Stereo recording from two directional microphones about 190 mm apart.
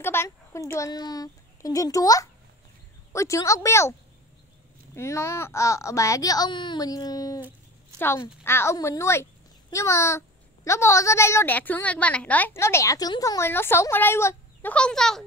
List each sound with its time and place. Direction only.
0.0 s a child's voice: 10° left (ahead or behind)
4.9 s a child's voice: 15° left (ahead or behind)